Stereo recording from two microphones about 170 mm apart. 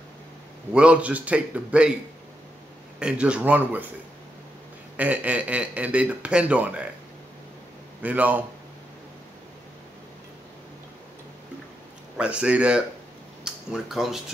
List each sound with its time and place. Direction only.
0.7 s speech: 5° right (ahead or behind)
3.0 s speech: 5° right (ahead or behind)
4.9 s speech: 10° right (ahead or behind)
8.0 s speech: 10° right (ahead or behind)
12.2 s speech: 5° right (ahead or behind)